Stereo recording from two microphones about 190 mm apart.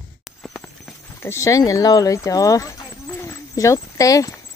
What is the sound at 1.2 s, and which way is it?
Speech, 15° left (ahead or behind).